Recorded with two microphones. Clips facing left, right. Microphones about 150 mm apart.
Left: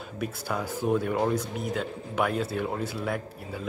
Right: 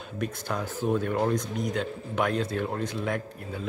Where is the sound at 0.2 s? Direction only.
10° left (ahead or behind).